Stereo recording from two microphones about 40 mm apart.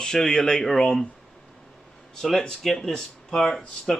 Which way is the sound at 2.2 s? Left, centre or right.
Centre.